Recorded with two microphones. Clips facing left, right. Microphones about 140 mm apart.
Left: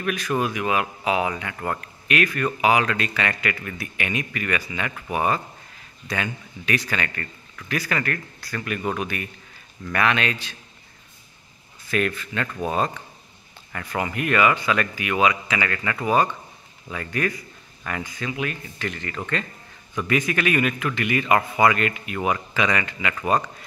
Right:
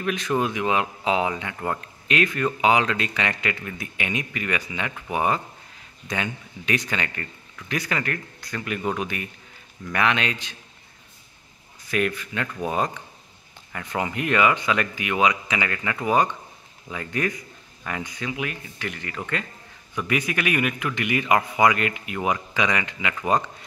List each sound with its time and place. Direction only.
0.0 s speech: 20° right (ahead or behind)
11.9 s a man's voice: 15° right (ahead or behind)